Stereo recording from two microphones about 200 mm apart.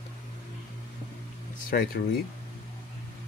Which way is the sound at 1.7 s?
45° left (ahead or behind).